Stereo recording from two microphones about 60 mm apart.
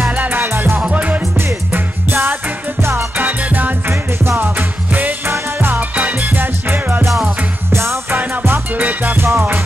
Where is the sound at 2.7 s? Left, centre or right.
Right.